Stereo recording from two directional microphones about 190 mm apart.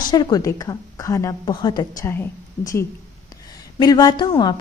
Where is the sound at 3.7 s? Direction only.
20° left (ahead or behind).